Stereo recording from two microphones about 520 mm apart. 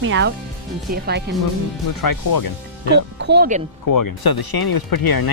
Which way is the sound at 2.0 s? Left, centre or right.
Left.